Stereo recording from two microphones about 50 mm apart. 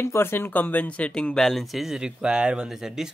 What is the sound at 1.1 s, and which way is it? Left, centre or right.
Speech, centre.